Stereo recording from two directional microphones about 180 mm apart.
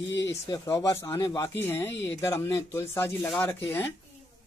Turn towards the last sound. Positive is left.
turn(degrees=10)  # may be behind; listen again after turning